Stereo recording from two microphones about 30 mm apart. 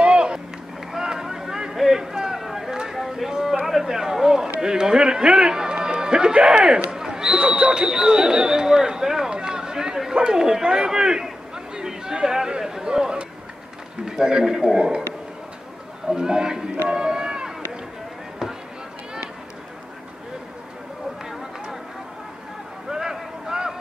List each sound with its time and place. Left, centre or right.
0.0 s run: right
0.9 s a sound: centre
3.3 s a sound: right
3.6 s run: centre; by 5.5 s right
5.5 s run: right
5.8 s music: right
6.3 s speech: right
6.7 s a man's voice: right
11.5 s chatter: right
14.0 s a man's voice: right
16.1 s a man's voice: right
22.8 s a sound: centre